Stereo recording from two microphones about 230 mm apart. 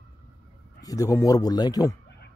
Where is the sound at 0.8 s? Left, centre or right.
Centre.